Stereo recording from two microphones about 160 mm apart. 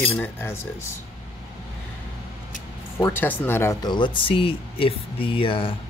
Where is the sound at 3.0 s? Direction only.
15° left (ahead or behind); by 5.7 s 35° left (ahead or behind).